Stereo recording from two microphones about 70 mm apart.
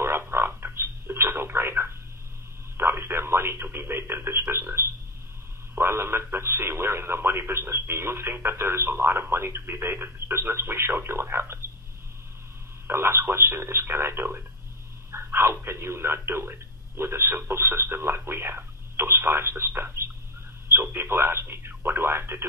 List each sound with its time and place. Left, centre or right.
0.0 s frog: right
2.8 s radio: right
5.8 s speech: right
12.8 s speech: right